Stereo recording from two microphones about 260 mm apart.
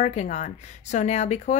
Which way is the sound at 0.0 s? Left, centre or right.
Left.